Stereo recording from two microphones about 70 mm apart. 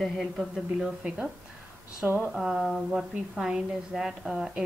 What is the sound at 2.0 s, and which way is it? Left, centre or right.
Speech, right.